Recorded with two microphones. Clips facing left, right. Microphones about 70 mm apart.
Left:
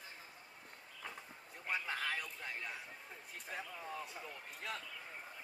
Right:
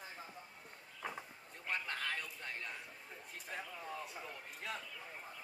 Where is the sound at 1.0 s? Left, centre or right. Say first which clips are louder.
Right 5 dB; centre.